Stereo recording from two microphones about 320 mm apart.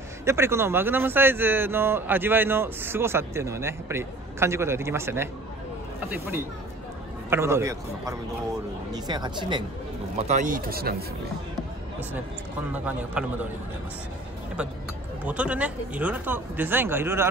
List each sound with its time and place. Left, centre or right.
0.2 s speech: centre
7.2 s speech: centre; by 11.1 s right
12.7 s speech: centre
15.2 s speech: centre